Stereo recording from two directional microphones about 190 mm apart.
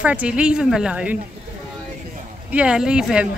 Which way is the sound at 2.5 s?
5° right (ahead or behind).